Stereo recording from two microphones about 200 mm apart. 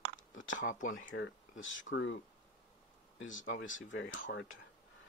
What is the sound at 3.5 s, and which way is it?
Speech, 75° left (ahead or behind).